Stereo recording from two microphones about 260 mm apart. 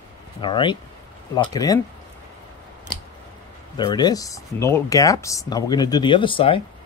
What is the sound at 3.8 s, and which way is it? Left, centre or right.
Speech, centre.